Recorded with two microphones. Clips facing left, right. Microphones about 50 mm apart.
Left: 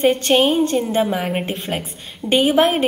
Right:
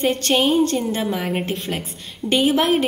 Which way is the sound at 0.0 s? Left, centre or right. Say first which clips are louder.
Left 3 dB; centre.